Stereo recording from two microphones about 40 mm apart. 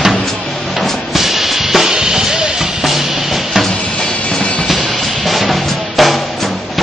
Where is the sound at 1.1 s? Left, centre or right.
Centre.